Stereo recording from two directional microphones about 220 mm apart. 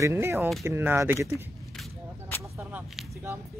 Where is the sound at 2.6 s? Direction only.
5° right (ahead or behind).